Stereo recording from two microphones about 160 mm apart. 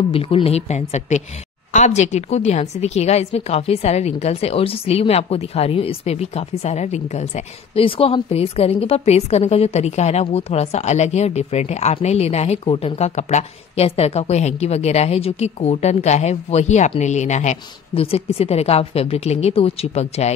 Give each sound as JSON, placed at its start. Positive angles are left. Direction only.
{"t": 0.1, "sound": "a woman's voice", "side_deg": 35}